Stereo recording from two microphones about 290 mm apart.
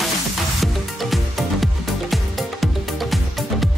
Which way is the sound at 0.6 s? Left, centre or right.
Centre.